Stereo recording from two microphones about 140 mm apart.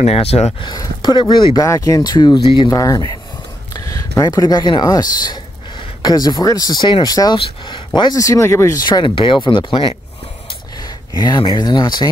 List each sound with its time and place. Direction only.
0.0 s speech: 45° left (ahead or behind); by 3.1 s 25° left (ahead or behind)
3.7 s a sound: 25° left (ahead or behind)
4.2 s speech: 25° left (ahead or behind)